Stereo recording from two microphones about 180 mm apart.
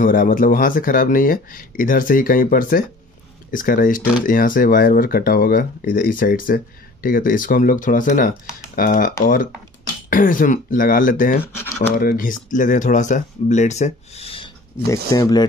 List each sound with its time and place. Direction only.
0.0 s speech: 50° left (ahead or behind)
11.5 s speech: 10° left (ahead or behind)
12.0 s speech: 50° left (ahead or behind); by 14.5 s 30° left (ahead or behind)
14.9 s speech: 20° left (ahead or behind)